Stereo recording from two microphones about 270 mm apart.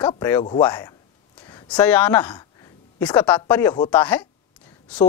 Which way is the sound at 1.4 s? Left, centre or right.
Centre.